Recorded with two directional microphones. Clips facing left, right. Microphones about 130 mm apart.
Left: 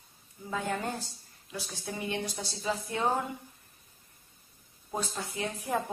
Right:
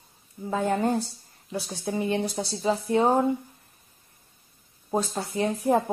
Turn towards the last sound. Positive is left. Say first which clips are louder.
# right 9 dB
turn(degrees=-35)  # may be behind; listen again after turning